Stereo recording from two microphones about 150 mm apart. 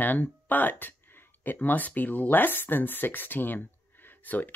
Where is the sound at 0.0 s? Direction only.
10° left (ahead or behind).